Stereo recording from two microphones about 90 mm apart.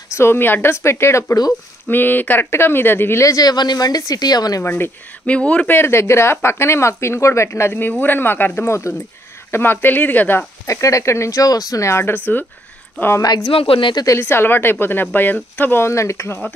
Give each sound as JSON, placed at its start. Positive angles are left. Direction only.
{"t": 0.1, "sound": "speech", "side_deg": 25}
{"t": 4.6, "sound": "speech", "side_deg": 25}
{"t": 5.8, "sound": "speech", "side_deg": 30}
{"t": 10.7, "sound": "speech", "side_deg": 35}
{"t": 13.5, "sound": "speech", "side_deg": 85}
{"t": 14.2, "sound": "speech", "side_deg": 25}